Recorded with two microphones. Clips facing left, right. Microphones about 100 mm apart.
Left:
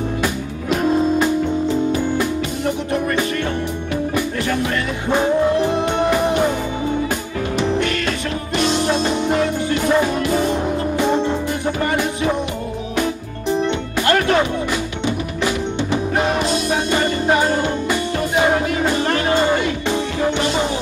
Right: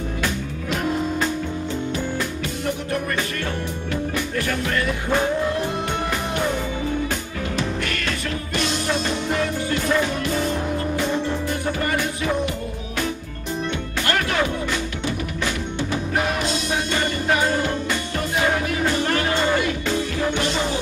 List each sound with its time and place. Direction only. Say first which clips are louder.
1.9 s music: left 6 dB; 15° left (ahead or behind)
3.9 s music: left 3 dB; 20° left (ahead or behind)
8.8 s music: left 5 dB; 20° left (ahead or behind)
13.6 s music: left 3 dB; 25° left (ahead or behind)